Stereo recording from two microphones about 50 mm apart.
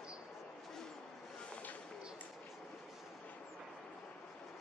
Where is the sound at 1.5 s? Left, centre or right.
Left.